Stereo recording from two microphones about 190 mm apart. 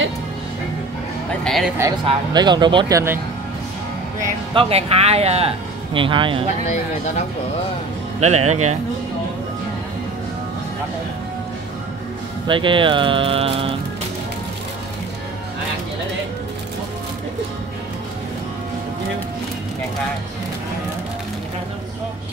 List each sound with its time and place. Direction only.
1.4 s speech: centre (ahead or behind)
1.8 s speech: 20° right (ahead or behind)
4.6 s speech: 30° right (ahead or behind)
8.2 s speech: 35° right (ahead or behind)
12.4 s speech: 25° right (ahead or behind)